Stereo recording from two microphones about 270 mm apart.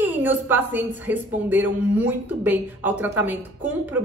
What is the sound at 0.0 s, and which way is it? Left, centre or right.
A woman's voice, centre.